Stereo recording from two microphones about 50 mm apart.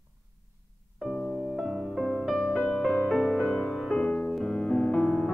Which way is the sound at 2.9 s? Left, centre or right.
Centre.